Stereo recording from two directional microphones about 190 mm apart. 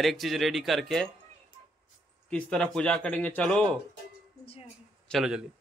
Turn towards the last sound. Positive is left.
turn(degrees=0)  # may be behind; listen again after turning